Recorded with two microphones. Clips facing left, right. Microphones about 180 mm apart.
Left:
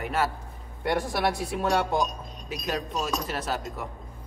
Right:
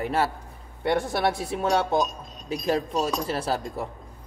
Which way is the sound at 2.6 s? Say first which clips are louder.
Right 5 dB; 30° right (ahead or behind).